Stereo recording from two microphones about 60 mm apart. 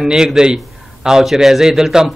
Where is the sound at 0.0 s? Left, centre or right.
Centre.